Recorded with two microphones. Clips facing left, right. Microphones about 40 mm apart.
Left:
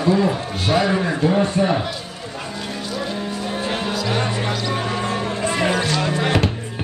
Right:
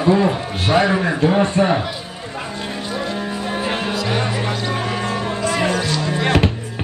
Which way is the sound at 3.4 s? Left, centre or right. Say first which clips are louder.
Right 2 dB; right.